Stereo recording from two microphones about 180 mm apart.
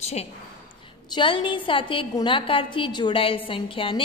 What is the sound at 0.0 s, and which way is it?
A woman's voice, 35° left (ahead or behind).